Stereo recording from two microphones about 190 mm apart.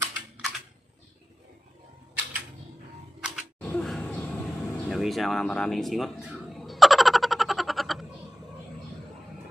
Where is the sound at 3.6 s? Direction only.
5° left (ahead or behind).